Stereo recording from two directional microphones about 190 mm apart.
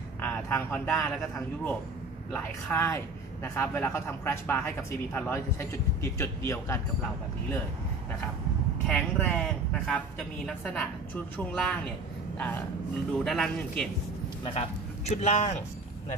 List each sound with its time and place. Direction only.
0.2 s vehicle: 10° left (ahead or behind)
2.3 s speech: 10° left (ahead or behind)
8.8 s speech: 5° left (ahead or behind)
14.4 s a man's voice: 30° left (ahead or behind)